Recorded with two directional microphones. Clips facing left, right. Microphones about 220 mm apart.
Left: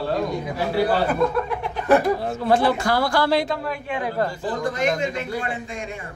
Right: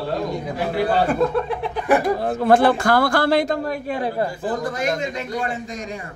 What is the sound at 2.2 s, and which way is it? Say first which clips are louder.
A man's voice: right 4 dB; 55° right (ahead or behind).